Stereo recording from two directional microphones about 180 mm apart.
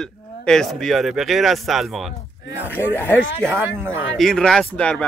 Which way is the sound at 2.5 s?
10° left (ahead or behind).